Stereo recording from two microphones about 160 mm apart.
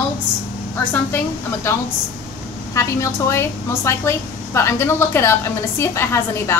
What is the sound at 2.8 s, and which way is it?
A woman's voice, 20° left (ahead or behind).